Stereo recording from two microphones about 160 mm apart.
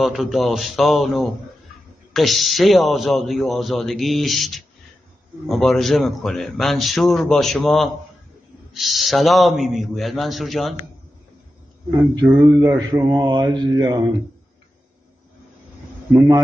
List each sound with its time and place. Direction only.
0.0 s a man's voice: centre (ahead or behind)
12.3 s mantra: 15° right (ahead or behind)